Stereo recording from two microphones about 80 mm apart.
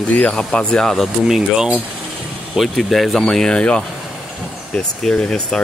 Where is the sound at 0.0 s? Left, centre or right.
Centre.